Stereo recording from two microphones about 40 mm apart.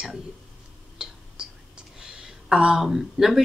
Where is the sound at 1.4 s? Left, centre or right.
Centre.